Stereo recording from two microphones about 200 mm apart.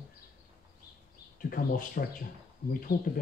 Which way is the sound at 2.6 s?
55° left (ahead or behind).